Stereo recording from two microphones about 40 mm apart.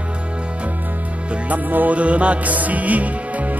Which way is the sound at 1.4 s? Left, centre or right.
Right.